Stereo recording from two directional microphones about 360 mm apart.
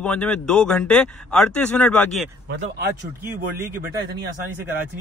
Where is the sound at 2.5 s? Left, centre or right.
Right.